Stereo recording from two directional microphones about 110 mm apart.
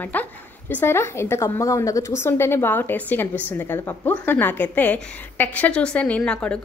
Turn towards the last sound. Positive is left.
turn(degrees=10)  # may be behind; listen again after turning